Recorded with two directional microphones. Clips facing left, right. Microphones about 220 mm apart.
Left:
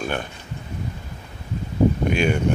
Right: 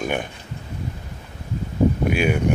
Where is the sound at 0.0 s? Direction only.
15° right (ahead or behind).